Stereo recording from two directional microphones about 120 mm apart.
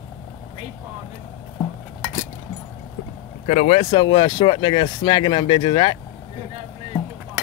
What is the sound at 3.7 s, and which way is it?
Speech, 40° left (ahead or behind).